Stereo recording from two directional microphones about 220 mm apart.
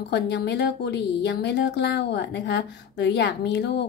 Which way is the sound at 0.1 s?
50° left (ahead or behind).